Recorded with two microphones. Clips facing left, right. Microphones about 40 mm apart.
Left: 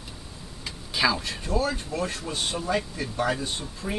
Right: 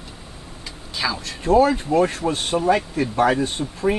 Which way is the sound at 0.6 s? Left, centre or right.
Centre.